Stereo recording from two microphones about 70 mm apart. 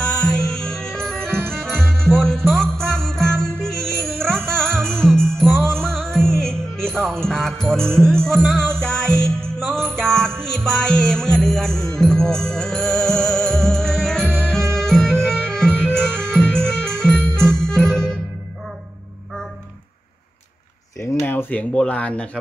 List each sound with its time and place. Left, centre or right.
0.0 s music: centre
21.0 s a sound: left
21.3 s speech: left